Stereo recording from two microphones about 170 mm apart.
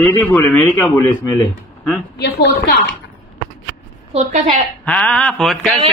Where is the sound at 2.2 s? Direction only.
85° left.